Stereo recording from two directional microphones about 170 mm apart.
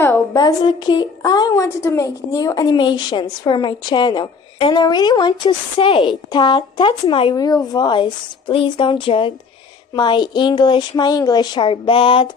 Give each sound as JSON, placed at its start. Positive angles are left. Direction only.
{"t": 0.0, "sound": "a woman's voice", "side_deg": 15}